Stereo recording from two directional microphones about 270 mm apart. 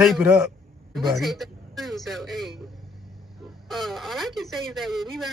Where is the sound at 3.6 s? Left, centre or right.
Centre.